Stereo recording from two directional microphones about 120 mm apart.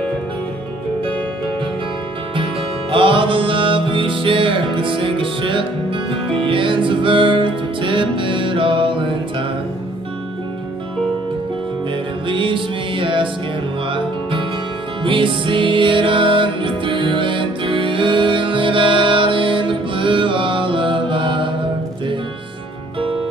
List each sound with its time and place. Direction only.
2.9 s music: 45° right (ahead or behind)
12.3 s music: 45° right (ahead or behind)